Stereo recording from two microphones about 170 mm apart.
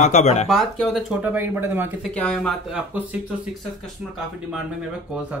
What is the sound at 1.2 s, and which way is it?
Speech, 10° right (ahead or behind).